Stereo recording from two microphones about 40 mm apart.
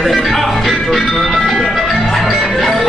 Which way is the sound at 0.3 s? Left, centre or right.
Centre.